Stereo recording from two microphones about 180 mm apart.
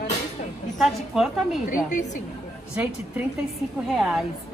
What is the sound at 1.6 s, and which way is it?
Speech, 45° left (ahead or behind).